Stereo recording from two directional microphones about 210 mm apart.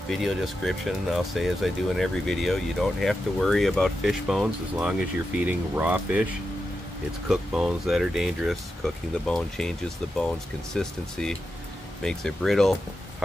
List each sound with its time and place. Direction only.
0.1 s speech: centre (ahead or behind)
7.2 s speech: centre (ahead or behind)